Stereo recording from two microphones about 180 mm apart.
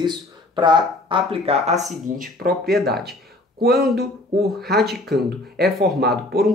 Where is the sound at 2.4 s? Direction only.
60° right (ahead or behind).